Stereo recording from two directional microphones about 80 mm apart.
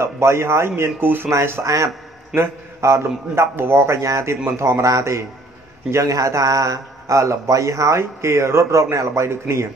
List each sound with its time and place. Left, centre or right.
0.0 s a man's voice: right